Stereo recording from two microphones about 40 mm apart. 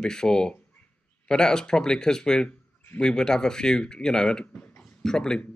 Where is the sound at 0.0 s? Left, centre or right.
Centre.